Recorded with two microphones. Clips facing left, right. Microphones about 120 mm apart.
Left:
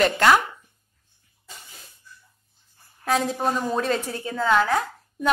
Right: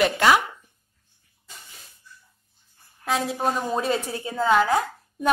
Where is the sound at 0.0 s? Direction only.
5° right (ahead or behind).